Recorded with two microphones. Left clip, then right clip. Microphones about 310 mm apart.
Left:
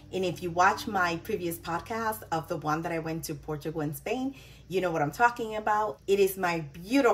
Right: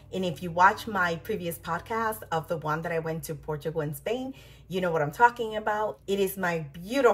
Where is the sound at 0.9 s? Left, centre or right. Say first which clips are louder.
Right 1 dB; centre.